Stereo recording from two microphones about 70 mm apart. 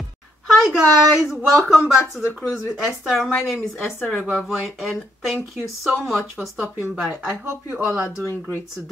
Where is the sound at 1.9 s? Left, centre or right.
Left.